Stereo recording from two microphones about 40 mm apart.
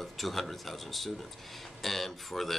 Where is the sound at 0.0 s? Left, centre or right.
Centre.